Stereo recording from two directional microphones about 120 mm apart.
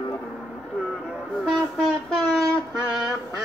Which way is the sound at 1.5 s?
10° left (ahead or behind).